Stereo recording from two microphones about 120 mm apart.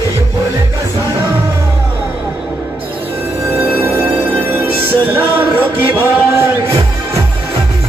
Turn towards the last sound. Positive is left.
turn(degrees=-20)  # may be behind; listen again after turning